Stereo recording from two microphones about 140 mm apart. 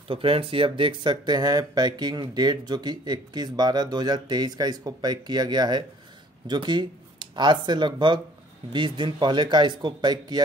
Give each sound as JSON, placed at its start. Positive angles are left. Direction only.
{"t": 0.1, "sound": "speech", "side_deg": -40}